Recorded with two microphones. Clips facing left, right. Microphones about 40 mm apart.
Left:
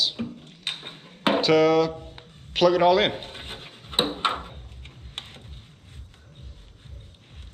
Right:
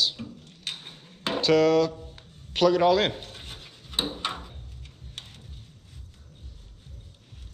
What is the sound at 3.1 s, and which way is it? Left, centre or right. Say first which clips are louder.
Drawer open or close: left 4 dB; left.